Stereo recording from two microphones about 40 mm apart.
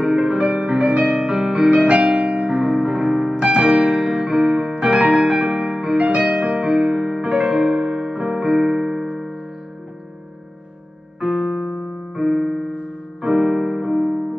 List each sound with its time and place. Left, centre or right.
0.0 s music: right
0.9 s piano: right
5.2 s music: right
11.1 s keyboard: centre